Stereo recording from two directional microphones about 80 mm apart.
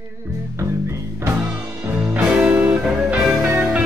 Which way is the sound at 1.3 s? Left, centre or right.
Centre.